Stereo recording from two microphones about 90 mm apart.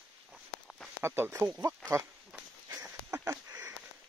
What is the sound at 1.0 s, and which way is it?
Speech, 25° right (ahead or behind).